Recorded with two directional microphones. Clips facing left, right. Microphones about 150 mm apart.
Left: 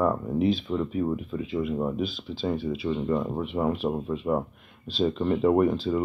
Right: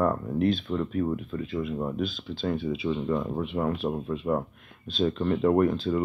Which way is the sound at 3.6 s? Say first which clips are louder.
Left 3 dB; 10° left (ahead or behind).